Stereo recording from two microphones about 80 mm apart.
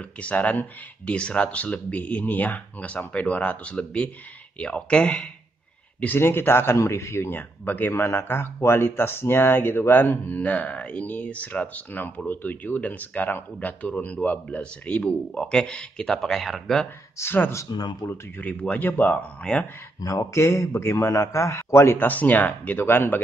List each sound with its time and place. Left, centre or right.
0.2 s speech: centre
6.1 s speech: left; by 16.8 s centre
17.2 s speech: left
17.6 s speech: left
18.4 s speech: centre
20.0 s speech: left
21.1 s speech: left
21.9 s speech: left